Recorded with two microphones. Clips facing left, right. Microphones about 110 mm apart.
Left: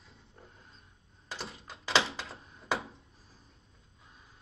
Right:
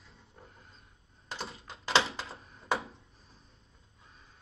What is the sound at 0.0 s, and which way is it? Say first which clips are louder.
Wild animals: right 1 dB; centre (ahead or behind).